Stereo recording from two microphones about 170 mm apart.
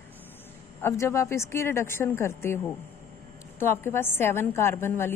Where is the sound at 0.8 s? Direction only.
15° left (ahead or behind).